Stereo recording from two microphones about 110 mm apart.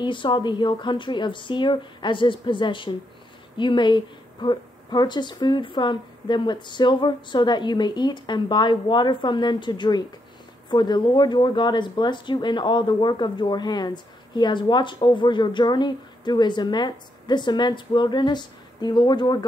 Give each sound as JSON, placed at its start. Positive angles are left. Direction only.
{"t": 0.0, "sound": "speech", "side_deg": 45}